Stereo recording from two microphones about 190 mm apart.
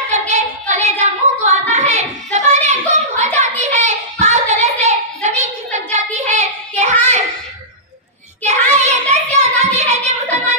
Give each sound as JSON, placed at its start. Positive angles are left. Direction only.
{"t": 0.1, "sound": "a sound", "side_deg": -40}
{"t": 3.3, "sound": "child singing", "side_deg": -40}
{"t": 8.5, "sound": "child singing", "side_deg": -35}